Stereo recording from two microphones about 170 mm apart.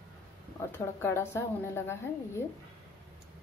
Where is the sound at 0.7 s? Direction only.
15° left (ahead or behind).